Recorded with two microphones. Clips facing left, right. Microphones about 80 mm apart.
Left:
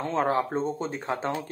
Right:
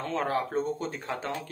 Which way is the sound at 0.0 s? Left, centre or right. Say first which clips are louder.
Left 4 dB; left.